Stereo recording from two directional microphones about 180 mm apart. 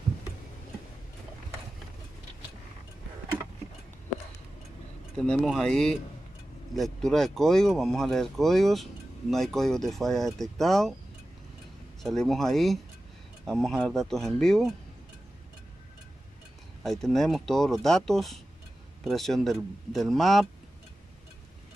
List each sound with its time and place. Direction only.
5.1 s speech: 5° left (ahead or behind)
12.0 s speech: centre (ahead or behind)
16.8 s speech: centre (ahead or behind)